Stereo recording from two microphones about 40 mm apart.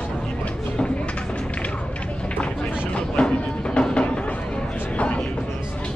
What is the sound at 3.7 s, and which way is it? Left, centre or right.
Music, left.